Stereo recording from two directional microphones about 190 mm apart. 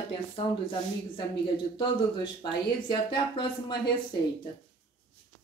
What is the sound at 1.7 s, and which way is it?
Speech, 20° left (ahead or behind).